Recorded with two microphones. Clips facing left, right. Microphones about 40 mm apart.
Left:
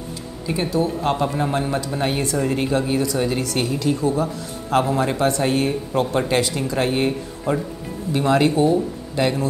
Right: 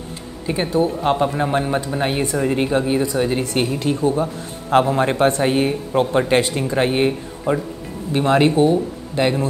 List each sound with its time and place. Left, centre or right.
0.6 s speech: right
1.9 s speech: centre; by 5.4 s right
5.4 s speech: right
7.1 s speech: centre
8.1 s speech: right
8.7 s speech: centre